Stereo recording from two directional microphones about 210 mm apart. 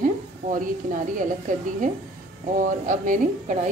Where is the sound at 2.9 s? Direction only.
35° right (ahead or behind).